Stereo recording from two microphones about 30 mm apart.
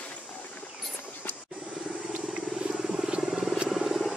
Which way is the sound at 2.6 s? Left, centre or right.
Right.